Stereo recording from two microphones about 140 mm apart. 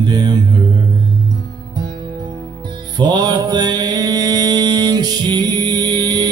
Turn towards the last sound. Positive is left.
turn(degrees=-30)  # may be behind; listen again after turning